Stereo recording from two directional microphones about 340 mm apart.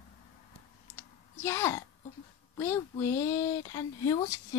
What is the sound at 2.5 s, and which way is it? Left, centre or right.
Speech, centre.